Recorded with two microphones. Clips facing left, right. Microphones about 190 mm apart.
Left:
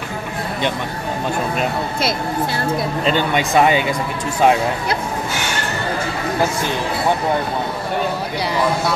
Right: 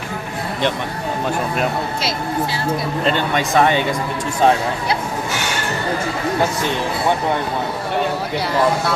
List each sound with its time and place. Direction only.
2.0 s speech: 55° left (ahead or behind)
3.1 s speech: 10° left (ahead or behind)